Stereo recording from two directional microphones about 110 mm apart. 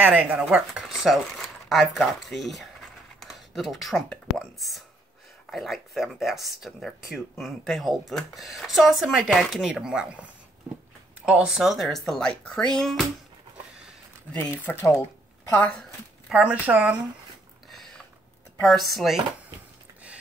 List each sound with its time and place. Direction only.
0.0 s speech: 10° right (ahead or behind); by 12.9 s 5° left (ahead or behind)
14.6 s speech: 20° left (ahead or behind)
15.7 s speech: 5° left (ahead or behind)
16.3 s speech: 15° right (ahead or behind)
17.6 s a sound: centre (ahead or behind)
18.6 s speech: centre (ahead or behind)